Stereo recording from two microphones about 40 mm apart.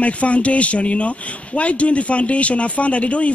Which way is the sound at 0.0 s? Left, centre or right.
Left.